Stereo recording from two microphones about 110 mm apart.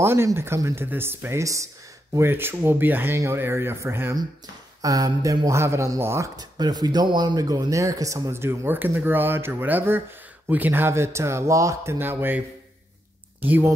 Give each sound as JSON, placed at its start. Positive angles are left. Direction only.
{"t": 0.0, "sound": "speech", "side_deg": -25}
{"t": 4.8, "sound": "speech", "side_deg": -35}